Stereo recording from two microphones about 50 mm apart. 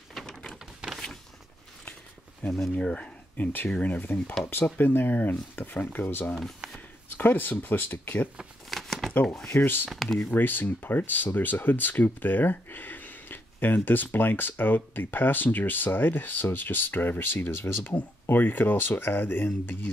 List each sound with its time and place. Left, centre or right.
0.1 s a sound: centre
0.5 s a sound: centre
2.8 s speech: left
3.3 s speech: left
4.1 s speech: left
4.5 s speech: left
6.6 s a sound: right
7.2 s speech: left
8.6 s shuffling cards: centre
9.5 s speech: left
9.8 s speech: centre
10.3 s speech: left